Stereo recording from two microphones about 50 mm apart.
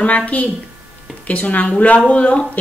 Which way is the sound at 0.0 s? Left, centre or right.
Left.